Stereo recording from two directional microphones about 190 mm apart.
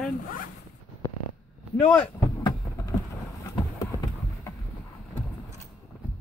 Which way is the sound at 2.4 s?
15° left (ahead or behind).